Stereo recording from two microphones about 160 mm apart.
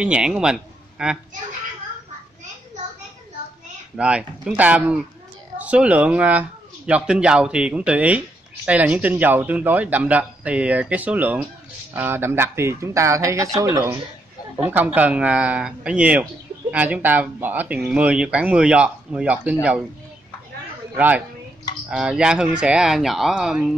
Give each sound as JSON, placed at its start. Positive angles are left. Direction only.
{"t": 0.0, "sound": "a man's voice", "side_deg": -5}
{"t": 3.9, "sound": "speech", "side_deg": -5}
{"t": 20.9, "sound": "speech", "side_deg": -10}